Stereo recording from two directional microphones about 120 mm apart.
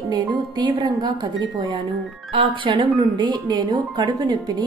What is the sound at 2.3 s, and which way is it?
A woman's voice, 45° right (ahead or behind).